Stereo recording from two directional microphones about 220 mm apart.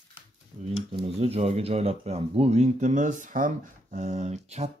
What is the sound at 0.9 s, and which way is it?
Speech, 25° right (ahead or behind).